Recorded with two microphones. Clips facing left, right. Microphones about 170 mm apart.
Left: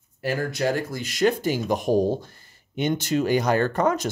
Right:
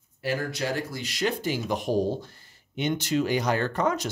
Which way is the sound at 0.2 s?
50° left (ahead or behind).